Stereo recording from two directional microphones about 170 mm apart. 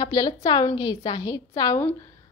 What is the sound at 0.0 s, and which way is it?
A woman's voice, 20° left (ahead or behind).